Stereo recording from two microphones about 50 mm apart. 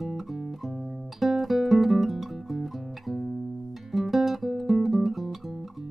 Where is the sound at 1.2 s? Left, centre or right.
Centre.